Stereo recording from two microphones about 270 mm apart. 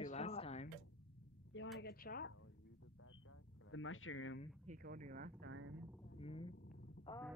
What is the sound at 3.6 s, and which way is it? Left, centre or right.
Speech, left.